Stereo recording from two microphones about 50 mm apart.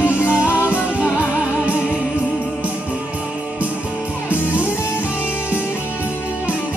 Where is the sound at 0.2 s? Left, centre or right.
Right.